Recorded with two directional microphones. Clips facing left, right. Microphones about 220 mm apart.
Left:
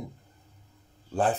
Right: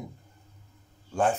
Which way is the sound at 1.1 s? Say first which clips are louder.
Even; 35° left (ahead or behind).